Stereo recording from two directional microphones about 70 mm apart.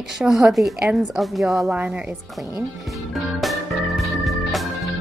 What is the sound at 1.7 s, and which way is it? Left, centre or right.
Speech, right.